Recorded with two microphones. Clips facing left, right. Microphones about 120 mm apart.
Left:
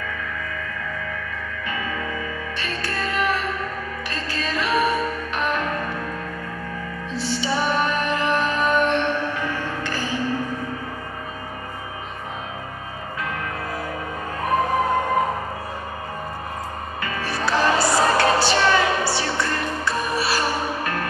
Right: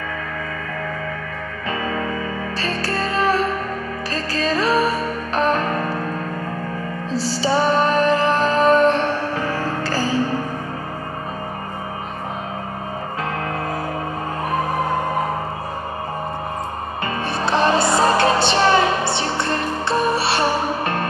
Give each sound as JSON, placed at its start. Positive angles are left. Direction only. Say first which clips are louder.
{"t": 1.7, "sound": "music", "louder": "right 6 dB", "side_deg": -35}
{"t": 7.1, "sound": "music", "louder": "right 4 dB", "side_deg": -35}
{"t": 17.0, "sound": "music", "louder": "right 3 dB", "side_deg": -25}